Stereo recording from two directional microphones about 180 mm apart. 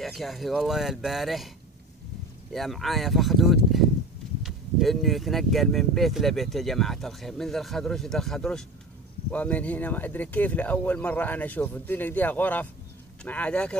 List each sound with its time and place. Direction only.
0.0 s speech: centre (ahead or behind)
2.5 s speech: centre (ahead or behind)